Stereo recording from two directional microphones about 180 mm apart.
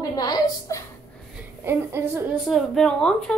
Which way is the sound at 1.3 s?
10° right (ahead or behind).